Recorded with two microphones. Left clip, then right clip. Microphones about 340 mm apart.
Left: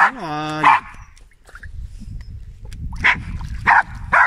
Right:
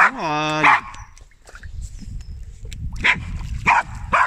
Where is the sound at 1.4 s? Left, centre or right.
Centre.